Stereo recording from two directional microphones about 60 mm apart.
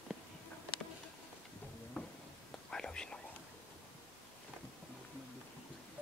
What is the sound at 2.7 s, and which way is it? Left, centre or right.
Whispering, centre.